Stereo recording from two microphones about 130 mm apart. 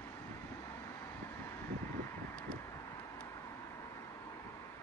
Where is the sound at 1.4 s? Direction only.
20° left (ahead or behind).